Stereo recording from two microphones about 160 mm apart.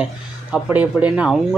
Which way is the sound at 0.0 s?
5° right (ahead or behind).